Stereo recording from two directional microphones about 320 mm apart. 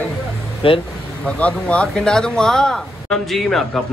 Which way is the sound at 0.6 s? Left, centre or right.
Centre.